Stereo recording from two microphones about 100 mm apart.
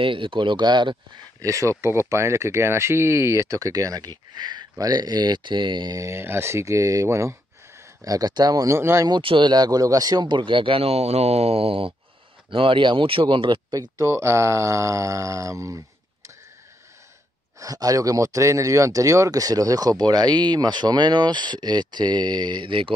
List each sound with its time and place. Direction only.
0.0 s speech: 60° right (ahead or behind)
1.4 s speech: 30° right (ahead or behind); by 5.9 s 50° right (ahead or behind)
5.9 s speech: 25° right (ahead or behind)
9.2 s speech: 55° right (ahead or behind)
12.4 s speech: 55° right (ahead or behind)
13.7 s speech: 35° right (ahead or behind)
17.6 s speech: 35° right (ahead or behind); by 22.9 s 60° right (ahead or behind)